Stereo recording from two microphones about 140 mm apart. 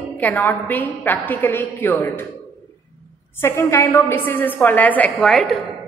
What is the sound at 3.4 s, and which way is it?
A woman's voice, 20° left (ahead or behind).